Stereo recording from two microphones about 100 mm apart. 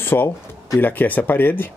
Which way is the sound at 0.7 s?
20° left (ahead or behind).